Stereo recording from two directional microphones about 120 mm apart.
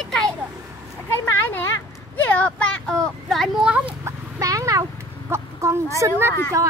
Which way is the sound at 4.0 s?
25° right (ahead or behind).